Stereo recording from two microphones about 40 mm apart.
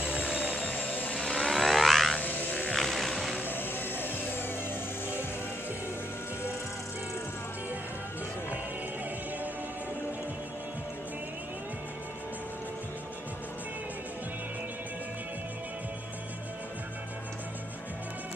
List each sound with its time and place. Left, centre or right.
0.0 s music: right
0.7 s helicopter: left
1.3 s a sound: centre
2.1 s a sound: left
2.7 s vehicle: centre
3.4 s music: left